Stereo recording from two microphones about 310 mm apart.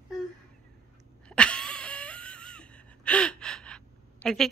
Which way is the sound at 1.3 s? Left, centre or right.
Centre.